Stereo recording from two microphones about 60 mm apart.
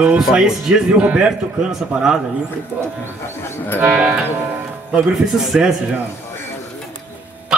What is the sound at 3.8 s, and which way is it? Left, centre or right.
Music, centre.